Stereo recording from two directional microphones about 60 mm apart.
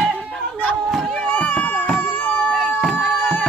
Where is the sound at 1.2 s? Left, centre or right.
Left.